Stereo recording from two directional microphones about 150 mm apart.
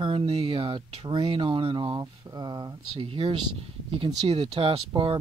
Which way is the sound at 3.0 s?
40° right (ahead or behind).